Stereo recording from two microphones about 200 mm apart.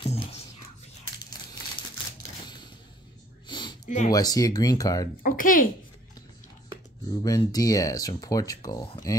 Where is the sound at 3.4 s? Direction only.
25° left (ahead or behind).